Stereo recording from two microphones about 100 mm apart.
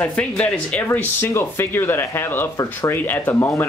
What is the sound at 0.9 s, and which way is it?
Speech, 25° left (ahead or behind).